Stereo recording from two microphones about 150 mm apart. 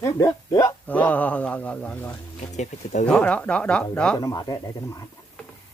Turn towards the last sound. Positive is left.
turn(degrees=25)  # may be behind; listen again after turning